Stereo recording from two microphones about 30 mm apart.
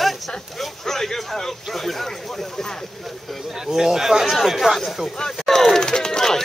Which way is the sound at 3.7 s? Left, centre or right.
Centre.